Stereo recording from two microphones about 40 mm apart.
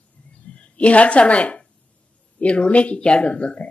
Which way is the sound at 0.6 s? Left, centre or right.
Left.